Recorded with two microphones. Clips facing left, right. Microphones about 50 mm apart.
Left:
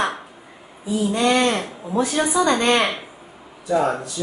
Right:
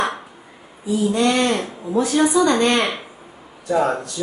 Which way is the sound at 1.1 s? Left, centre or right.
Centre.